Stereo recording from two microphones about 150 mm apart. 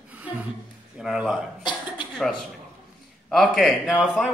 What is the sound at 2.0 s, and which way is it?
Cough, 35° left (ahead or behind).